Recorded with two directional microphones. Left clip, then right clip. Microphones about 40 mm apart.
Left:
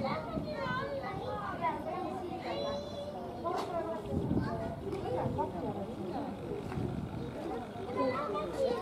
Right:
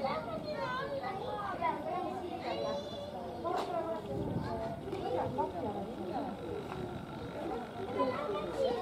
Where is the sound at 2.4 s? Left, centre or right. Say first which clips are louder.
Even; right.